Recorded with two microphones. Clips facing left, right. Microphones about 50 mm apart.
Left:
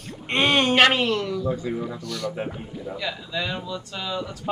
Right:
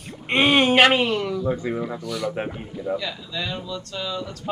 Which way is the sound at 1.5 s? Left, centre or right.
Right.